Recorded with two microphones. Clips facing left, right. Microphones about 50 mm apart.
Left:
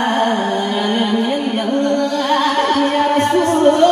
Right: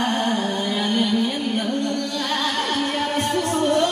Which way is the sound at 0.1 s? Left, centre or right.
Left.